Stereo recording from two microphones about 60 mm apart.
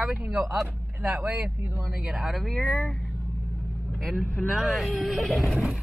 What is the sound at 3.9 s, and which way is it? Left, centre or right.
Speech, centre.